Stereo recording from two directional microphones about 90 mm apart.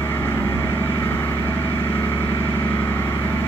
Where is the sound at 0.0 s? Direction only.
25° left (ahead or behind).